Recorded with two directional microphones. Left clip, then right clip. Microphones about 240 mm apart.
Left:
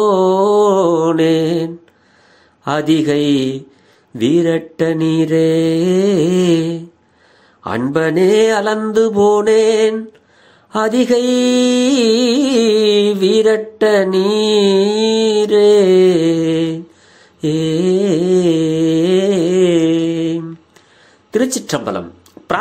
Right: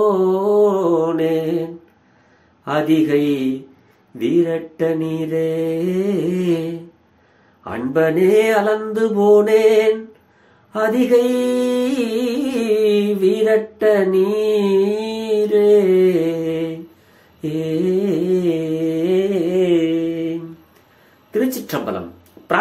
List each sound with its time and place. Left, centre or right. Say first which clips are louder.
0.2 s mantra: left 3 dB; left
2.6 s mantra: left 2 dB; left
4.2 s mantra: left 4 dB; left
7.6 s mantra: left 1 dB; left
21.3 s a sound: left 4 dB; left